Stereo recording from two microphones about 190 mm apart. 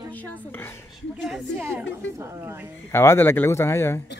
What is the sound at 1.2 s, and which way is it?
Speech, 5° right (ahead or behind).